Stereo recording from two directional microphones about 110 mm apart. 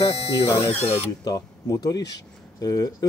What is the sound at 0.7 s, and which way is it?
Speech, 15° left (ahead or behind).